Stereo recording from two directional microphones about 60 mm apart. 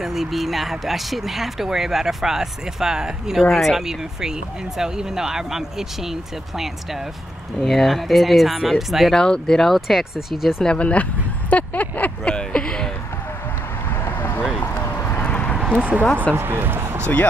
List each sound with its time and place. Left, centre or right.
0.0 s speech: centre
9.1 s speech: centre
9.8 s speech: centre
10.6 s a sound: centre
12.4 s a sound: centre
14.0 s vehicle: left
15.0 s vehicle: left
15.5 s a sound: centre
16.3 s speech: right